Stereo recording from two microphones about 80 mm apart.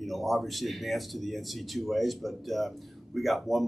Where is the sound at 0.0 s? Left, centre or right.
Centre.